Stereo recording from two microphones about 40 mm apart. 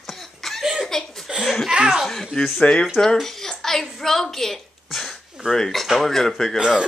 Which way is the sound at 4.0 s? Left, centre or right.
Centre.